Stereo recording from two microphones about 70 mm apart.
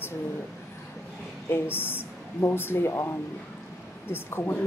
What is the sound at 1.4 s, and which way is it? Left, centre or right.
Speech, left.